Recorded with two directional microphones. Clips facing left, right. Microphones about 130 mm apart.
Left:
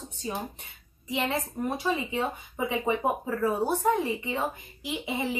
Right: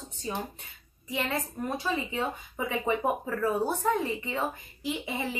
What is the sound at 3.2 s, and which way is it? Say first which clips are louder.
A woman's voice: left 1 dB; 15° left (ahead or behind).